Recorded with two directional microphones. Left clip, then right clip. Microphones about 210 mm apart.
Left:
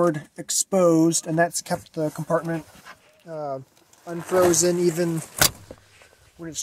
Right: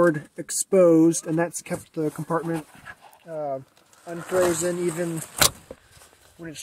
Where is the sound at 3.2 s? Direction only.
25° left (ahead or behind).